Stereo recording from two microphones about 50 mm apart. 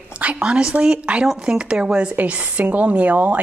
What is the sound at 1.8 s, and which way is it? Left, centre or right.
A woman's voice, right.